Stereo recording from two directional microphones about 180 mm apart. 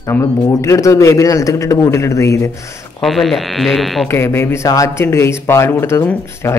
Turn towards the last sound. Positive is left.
turn(degrees=15)  # may be behind; listen again after turning